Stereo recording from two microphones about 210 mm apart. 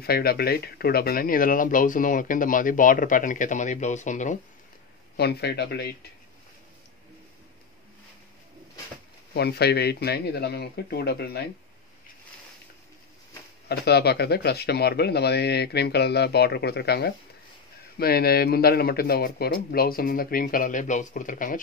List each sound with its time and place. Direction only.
0.0 s speech: 45° left (ahead or behind)
5.1 s speech: 50° left (ahead or behind)
9.3 s speech: 50° left (ahead or behind)
13.7 s speech: 50° left (ahead or behind)